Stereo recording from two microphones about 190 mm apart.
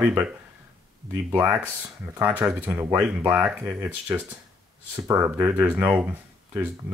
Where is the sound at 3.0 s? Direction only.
10° right (ahead or behind).